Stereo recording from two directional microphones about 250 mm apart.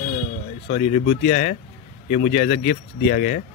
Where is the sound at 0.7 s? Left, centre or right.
Left.